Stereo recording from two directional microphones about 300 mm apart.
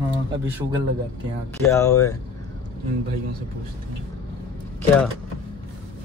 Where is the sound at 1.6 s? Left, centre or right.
Centre.